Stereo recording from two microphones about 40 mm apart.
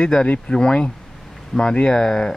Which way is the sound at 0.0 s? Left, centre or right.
Left.